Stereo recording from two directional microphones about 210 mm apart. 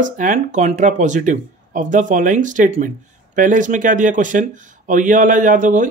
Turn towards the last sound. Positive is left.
turn(degrees=-40)  # may be behind; listen again after turning